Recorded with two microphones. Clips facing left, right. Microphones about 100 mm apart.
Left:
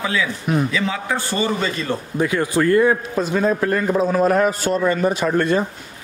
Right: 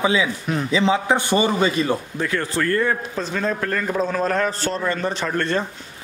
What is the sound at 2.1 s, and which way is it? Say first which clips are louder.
A man's voice: left 4 dB; 15° left (ahead or behind).